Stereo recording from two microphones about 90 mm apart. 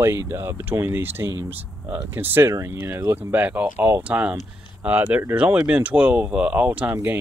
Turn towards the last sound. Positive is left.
turn(degrees=-20)  # may be behind; listen again after turning